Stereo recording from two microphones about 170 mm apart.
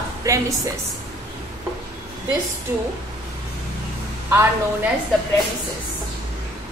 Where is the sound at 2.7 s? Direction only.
15° right (ahead or behind).